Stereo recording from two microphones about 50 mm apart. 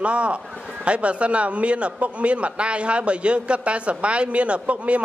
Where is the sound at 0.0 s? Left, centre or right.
Right.